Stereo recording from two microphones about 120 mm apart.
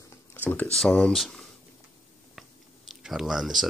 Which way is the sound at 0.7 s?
5° left (ahead or behind).